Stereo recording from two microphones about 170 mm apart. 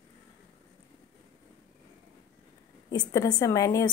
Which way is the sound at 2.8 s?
20° left (ahead or behind).